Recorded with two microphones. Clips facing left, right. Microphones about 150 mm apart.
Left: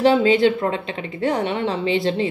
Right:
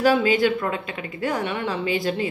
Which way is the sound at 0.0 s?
25° left (ahead or behind).